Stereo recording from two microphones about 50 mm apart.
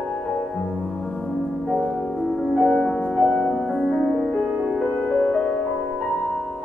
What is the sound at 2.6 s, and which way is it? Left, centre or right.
Music, centre.